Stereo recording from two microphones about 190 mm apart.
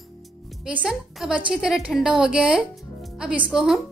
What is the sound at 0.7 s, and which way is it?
A woman's voice, 5° right (ahead or behind).